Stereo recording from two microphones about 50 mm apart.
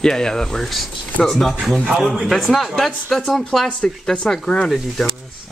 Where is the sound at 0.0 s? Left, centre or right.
Centre.